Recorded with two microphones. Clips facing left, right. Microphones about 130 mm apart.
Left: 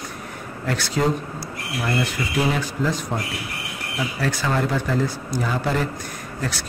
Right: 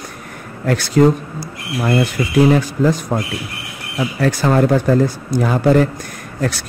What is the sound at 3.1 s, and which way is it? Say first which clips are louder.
Speech: right 6 dB; 45° right (ahead or behind).